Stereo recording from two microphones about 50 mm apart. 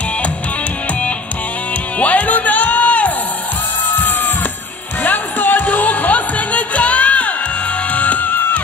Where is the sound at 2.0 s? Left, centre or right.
Left.